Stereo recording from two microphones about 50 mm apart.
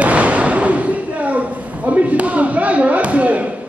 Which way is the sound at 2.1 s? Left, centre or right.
Right.